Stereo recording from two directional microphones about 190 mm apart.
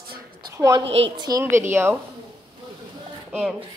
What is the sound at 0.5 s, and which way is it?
A woman's voice, 15° right (ahead or behind).